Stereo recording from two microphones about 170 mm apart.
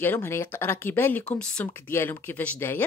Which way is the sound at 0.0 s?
10° left (ahead or behind).